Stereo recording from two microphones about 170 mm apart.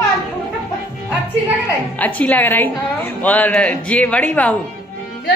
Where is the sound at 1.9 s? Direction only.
10° left (ahead or behind).